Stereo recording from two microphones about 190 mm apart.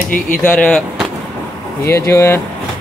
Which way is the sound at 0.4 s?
5° left (ahead or behind).